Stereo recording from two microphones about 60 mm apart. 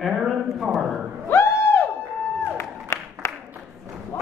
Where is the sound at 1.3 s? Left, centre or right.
Left.